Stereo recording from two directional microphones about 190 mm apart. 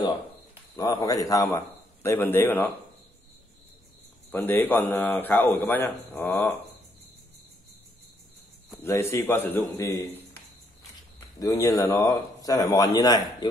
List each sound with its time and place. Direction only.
0.7 s a man's voice: 20° left (ahead or behind)
4.3 s a man's voice: 10° left (ahead or behind)
8.7 s a man's voice: 15° left (ahead or behind)